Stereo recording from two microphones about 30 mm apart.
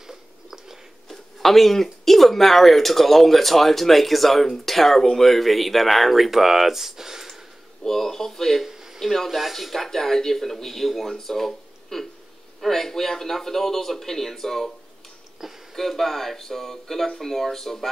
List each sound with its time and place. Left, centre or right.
0.0 s a sound: centre
1.0 s speech: centre
7.8 s speech: centre
8.6 s a sound: centre
9.0 s speech: centre
9.8 s speech: centre
15.4 s speech: centre
15.7 s speech: centre